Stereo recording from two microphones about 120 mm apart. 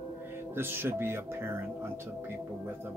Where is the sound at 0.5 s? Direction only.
20° right (ahead or behind).